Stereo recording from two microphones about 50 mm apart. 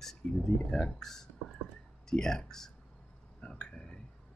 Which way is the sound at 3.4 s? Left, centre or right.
Centre.